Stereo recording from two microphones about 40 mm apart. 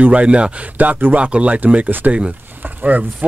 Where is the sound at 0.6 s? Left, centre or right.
Right.